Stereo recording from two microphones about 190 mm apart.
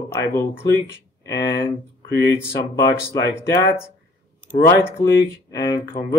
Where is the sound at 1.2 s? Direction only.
20° left (ahead or behind).